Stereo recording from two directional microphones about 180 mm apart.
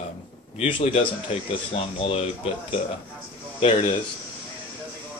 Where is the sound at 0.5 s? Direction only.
35° left (ahead or behind).